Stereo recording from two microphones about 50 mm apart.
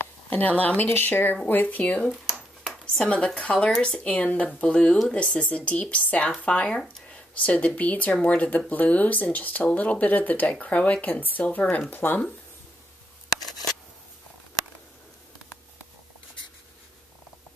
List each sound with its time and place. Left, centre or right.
0.3 s speech: left
2.0 s a sound: centre
2.8 s speech: centre; by 12.2 s left